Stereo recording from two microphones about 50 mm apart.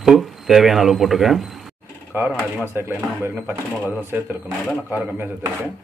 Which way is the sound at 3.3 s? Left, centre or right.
Right.